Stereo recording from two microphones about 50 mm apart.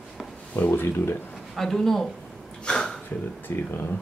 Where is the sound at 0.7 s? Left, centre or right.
Left.